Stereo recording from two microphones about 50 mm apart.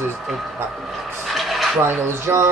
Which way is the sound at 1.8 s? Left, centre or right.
Right.